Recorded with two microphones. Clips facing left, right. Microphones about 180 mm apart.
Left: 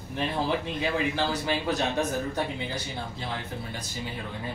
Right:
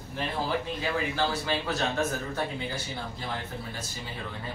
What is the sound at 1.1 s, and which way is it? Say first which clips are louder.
Speech: left 1 dB; 15° left (ahead or behind).